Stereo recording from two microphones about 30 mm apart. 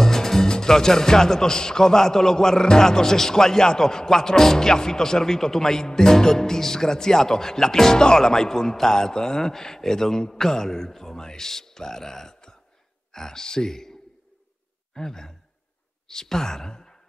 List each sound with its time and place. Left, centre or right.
0.0 s music: centre
0.5 s a man's voice: centre
15.0 s speech: centre